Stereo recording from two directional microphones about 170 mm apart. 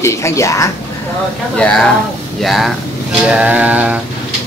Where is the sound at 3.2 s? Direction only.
5° right (ahead or behind).